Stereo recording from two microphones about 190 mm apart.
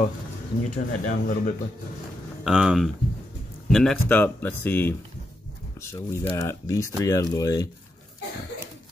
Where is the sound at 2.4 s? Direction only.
5° right (ahead or behind); by 7.6 s 20° left (ahead or behind).